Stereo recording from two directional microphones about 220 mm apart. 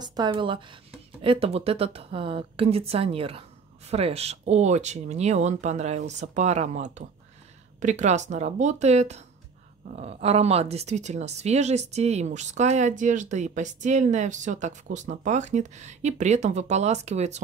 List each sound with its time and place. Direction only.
0.0 s a woman's voice: 20° right (ahead or behind)